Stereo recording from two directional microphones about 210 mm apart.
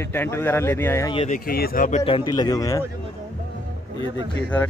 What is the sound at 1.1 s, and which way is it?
Speech, 35° left (ahead or behind).